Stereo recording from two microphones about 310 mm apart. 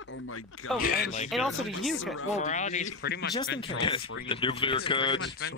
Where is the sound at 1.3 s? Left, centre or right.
Centre.